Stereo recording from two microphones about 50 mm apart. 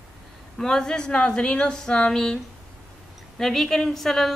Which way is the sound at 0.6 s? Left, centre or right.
Centre.